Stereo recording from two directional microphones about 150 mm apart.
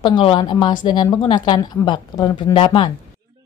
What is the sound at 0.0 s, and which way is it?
Speech, 35° left (ahead or behind).